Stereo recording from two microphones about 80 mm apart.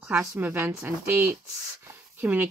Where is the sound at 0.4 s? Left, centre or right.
Right.